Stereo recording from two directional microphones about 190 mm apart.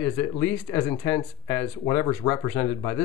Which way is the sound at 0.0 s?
10° left (ahead or behind).